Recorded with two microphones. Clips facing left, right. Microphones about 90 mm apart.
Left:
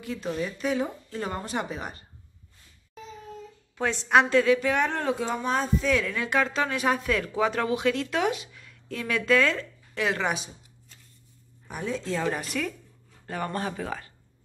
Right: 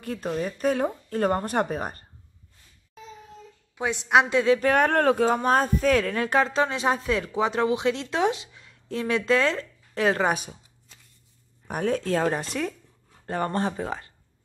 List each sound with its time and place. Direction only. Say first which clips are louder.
0.0 s speech: right 2 dB; 50° right (ahead or behind)
3.7 s a woman's voice: right 1 dB; 15° right (ahead or behind)
4.6 s speech: right 5 dB; 50° right (ahead or behind)
11.6 s speech: right 6 dB; 55° right (ahead or behind)
12.3 s speech: right 2 dB; 30° right (ahead or behind)